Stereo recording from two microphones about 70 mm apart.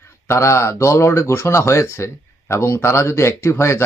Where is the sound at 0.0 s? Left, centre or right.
Left.